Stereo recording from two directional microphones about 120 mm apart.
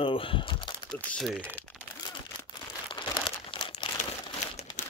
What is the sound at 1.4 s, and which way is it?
Speech, 15° left (ahead or behind).